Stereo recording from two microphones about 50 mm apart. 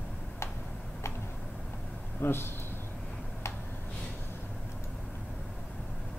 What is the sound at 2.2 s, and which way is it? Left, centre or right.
Speech, left.